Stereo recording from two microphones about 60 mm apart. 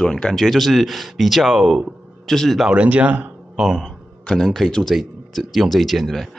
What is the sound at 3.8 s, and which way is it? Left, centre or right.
Speech, centre.